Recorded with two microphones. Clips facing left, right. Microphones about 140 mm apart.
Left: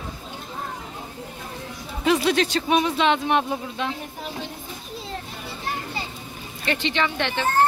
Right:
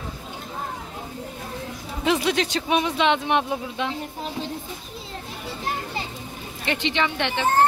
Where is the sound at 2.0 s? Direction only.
15° right (ahead or behind).